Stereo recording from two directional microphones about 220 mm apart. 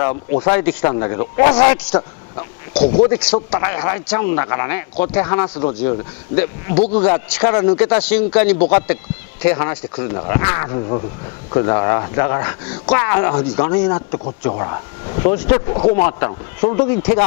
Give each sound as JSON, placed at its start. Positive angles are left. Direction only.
{"t": 0.1, "sound": "speech", "side_deg": 30}
{"t": 0.6, "sound": "speech", "side_deg": 10}
{"t": 3.1, "sound": "speech", "side_deg": 10}
{"t": 3.5, "sound": "speech", "side_deg": 20}
{"t": 5.1, "sound": "speech", "side_deg": 25}
{"t": 5.8, "sound": "speech", "side_deg": 10}
{"t": 6.8, "sound": "speech", "side_deg": 35}
{"t": 7.3, "sound": "speech", "side_deg": 10}
{"t": 13.8, "sound": "speech", "side_deg": 20}
{"t": 15.7, "sound": "speech", "side_deg": 30}
{"t": 16.1, "sound": "speech", "side_deg": 15}